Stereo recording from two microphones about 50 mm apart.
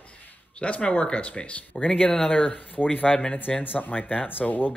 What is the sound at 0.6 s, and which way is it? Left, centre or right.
Speech, left.